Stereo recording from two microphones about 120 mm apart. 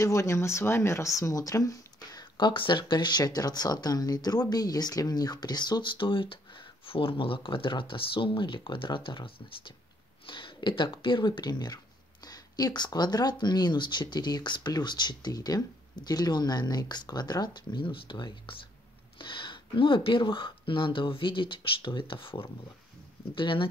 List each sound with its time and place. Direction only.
0.0 s speech: 25° left (ahead or behind); by 23.7 s 45° left (ahead or behind)